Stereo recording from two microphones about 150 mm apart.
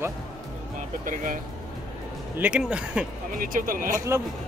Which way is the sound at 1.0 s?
60° right (ahead or behind).